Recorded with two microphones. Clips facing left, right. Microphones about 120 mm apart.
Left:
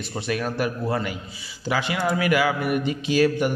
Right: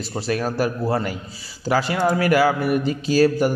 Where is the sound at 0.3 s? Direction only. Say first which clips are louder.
Right 3 dB; 35° right (ahead or behind).